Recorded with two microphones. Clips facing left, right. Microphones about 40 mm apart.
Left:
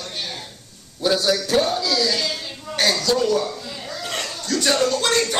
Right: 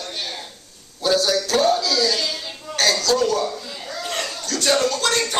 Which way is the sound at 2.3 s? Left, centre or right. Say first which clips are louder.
Even; centre.